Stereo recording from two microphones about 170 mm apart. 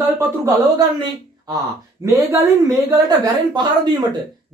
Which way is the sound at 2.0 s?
15° right (ahead or behind).